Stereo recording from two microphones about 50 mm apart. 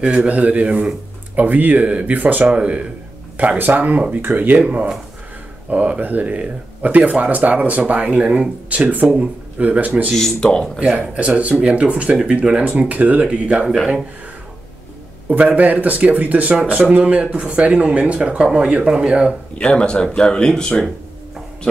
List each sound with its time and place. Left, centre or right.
0.0 s speech: right
3.3 s speech: right
5.7 s speech: right
10.1 s speech: centre
10.8 s speech: right
15.2 s speech: right
19.6 s speech: left